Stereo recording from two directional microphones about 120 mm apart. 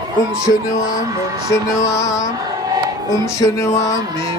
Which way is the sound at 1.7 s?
25° left (ahead or behind).